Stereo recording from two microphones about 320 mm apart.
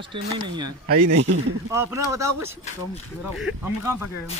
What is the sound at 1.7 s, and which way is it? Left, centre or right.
A man's voice, centre.